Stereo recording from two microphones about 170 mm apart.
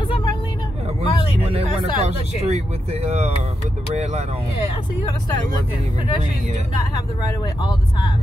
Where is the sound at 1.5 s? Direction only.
35° right (ahead or behind).